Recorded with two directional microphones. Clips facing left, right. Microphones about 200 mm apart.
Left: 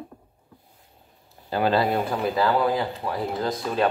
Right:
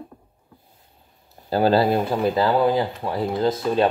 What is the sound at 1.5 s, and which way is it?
Speech, 35° right (ahead or behind).